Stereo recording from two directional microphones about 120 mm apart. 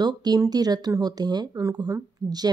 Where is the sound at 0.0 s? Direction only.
35° right (ahead or behind).